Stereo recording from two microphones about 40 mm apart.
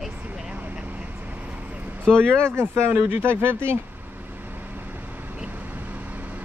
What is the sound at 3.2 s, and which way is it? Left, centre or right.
Speech, right.